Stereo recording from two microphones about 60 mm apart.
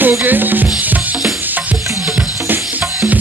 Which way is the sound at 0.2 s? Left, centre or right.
Right.